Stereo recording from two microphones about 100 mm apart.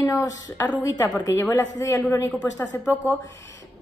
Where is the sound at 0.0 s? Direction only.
35° left (ahead or behind).